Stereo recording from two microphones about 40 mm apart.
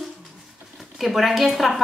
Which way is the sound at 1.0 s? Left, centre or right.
Centre.